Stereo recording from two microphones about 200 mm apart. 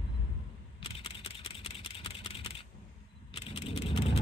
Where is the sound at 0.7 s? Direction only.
25° left (ahead or behind).